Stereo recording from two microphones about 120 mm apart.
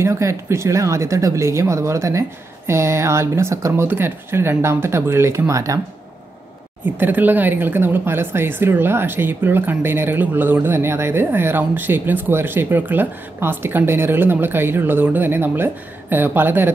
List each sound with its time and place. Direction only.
0.0 s speech: 25° right (ahead or behind)
7.0 s speech: 15° right (ahead or behind)